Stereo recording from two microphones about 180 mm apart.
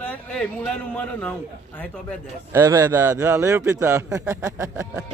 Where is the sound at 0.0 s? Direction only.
5° left (ahead or behind).